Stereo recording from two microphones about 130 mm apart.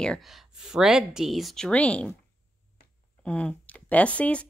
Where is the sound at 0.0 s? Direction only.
5° left (ahead or behind).